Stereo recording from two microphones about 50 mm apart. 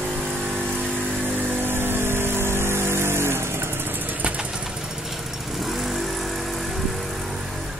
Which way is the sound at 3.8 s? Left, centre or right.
Right.